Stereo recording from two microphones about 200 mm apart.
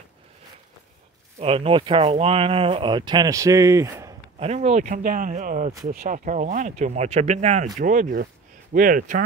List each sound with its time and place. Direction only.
1.4 s speech: 30° right (ahead or behind)
4.4 s speech: 35° right (ahead or behind)